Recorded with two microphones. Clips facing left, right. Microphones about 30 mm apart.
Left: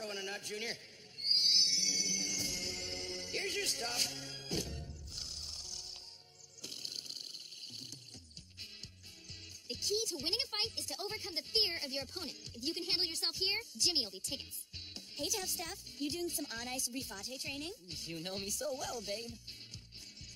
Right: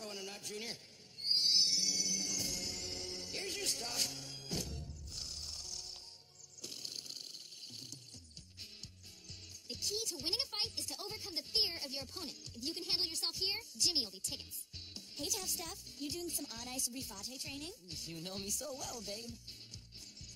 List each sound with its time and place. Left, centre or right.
0.2 s a man's voice: left
1.2 s music: left
9.7 s music: left
10.1 s a woman's voice: left